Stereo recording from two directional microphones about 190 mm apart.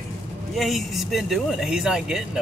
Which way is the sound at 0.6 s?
Centre (ahead or behind).